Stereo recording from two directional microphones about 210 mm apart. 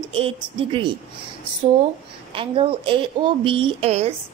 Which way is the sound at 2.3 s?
25° right (ahead or behind).